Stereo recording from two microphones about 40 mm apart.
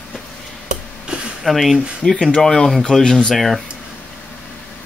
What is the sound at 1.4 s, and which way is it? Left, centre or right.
Speech, centre.